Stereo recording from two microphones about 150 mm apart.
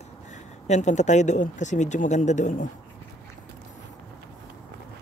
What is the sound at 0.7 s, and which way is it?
Speech, 50° left (ahead or behind).